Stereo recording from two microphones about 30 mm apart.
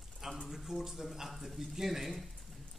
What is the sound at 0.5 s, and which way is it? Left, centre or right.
Speech, centre.